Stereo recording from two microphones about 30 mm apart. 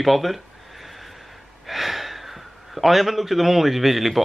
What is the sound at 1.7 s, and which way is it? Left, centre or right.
Speech, centre.